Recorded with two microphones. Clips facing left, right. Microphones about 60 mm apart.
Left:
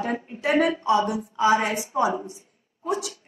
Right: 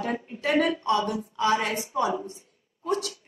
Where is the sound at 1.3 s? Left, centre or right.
Left.